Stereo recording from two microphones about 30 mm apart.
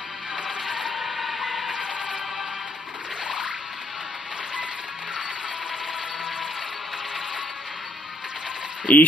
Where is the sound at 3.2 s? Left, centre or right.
Right.